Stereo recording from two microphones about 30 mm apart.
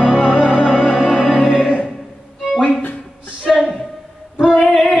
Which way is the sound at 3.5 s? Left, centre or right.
Centre.